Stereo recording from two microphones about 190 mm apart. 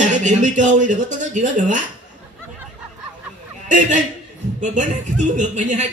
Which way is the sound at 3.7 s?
40° right (ahead or behind).